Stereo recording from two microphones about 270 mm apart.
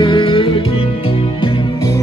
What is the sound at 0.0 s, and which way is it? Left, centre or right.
Music, centre.